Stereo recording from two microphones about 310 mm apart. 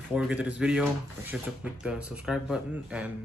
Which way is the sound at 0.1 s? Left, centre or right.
Centre.